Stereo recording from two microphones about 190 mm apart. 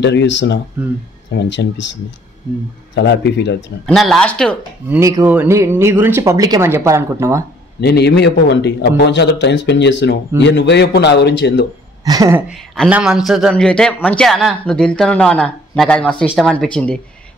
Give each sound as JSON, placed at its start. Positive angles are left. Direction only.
{"t": 0.0, "sound": "a man's voice", "side_deg": 65}
{"t": 2.9, "sound": "a man's voice", "side_deg": 65}
{"t": 3.8, "sound": "a man's voice", "side_deg": 0}
{"t": 4.8, "sound": "speech", "side_deg": -10}
{"t": 7.8, "sound": "a man's voice", "side_deg": 60}
{"t": 12.0, "sound": "speech", "side_deg": -20}
{"t": 12.5, "sound": "a man's voice", "side_deg": 0}